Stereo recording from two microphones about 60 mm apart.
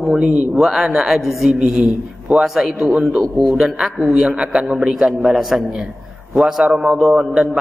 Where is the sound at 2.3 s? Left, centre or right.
Centre.